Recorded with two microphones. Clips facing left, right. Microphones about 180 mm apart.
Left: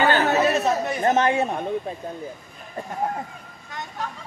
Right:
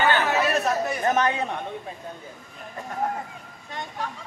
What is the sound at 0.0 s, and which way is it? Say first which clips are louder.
Chatter: left 3 dB; 40° left (ahead or behind).